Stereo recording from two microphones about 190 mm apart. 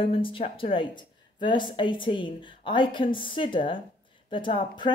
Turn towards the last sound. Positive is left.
turn(degrees=25)  # may be behind; listen again after turning